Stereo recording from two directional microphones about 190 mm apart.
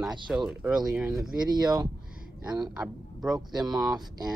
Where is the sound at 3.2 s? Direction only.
20° right (ahead or behind).